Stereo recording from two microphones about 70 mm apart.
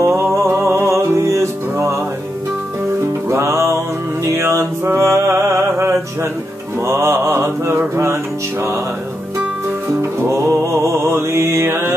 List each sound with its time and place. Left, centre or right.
0.0 s music: right
3.3 s music: right
6.9 s mantra: right
10.4 s mantra: right